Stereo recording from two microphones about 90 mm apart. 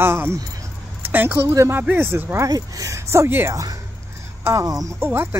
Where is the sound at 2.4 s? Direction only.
45° right (ahead or behind); by 3.5 s 25° right (ahead or behind).